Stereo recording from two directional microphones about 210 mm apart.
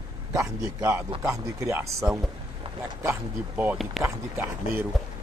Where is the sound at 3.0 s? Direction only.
10° right (ahead or behind).